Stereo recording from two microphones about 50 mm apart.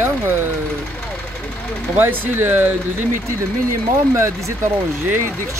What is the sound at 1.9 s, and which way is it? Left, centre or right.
Speech, right.